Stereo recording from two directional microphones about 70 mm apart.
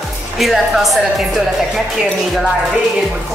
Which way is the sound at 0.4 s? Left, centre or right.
Centre.